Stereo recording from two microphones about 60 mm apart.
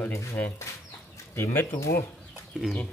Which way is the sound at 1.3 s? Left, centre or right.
Left.